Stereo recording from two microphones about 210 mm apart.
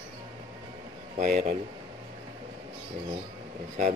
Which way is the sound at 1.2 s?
35° right (ahead or behind).